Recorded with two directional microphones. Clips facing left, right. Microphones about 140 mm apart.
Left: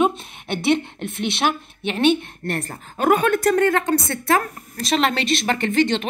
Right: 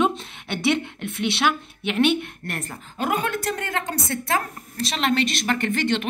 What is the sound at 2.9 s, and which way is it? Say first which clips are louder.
A woman's voice: left 7 dB; 55° left (ahead or behind).